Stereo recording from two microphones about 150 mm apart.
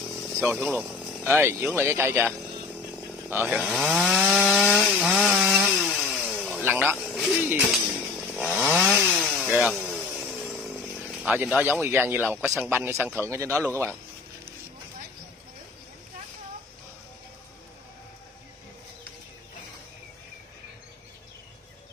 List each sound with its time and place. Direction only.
0.4 s speech: 10° right (ahead or behind)
3.5 s chainsaw: centre (ahead or behind)
7.0 s speech: centre (ahead or behind)
8.4 s chainsaw: centre (ahead or behind)
11.2 s speech: 10° right (ahead or behind)